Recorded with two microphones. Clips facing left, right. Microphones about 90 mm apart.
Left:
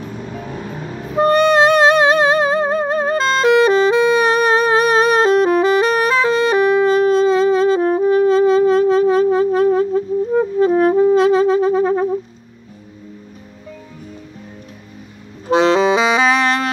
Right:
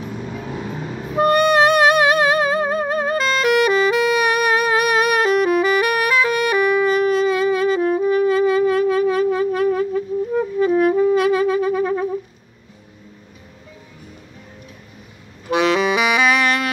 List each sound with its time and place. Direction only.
0.0 s vehicle: centre (ahead or behind)
1.1 s music: 30° left (ahead or behind)
15.4 s saxophone: 30° left (ahead or behind)